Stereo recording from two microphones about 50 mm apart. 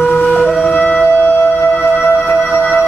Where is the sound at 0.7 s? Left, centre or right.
Left.